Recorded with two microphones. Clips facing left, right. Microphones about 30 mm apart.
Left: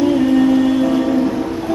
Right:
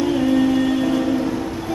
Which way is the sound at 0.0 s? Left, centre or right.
Centre.